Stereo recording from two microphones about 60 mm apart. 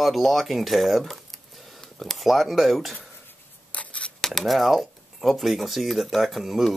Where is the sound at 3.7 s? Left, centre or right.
Left.